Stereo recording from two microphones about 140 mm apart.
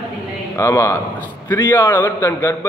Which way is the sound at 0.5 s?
20° left (ahead or behind).